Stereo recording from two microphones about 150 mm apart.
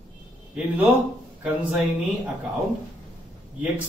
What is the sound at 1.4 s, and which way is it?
Speech, 5° right (ahead or behind).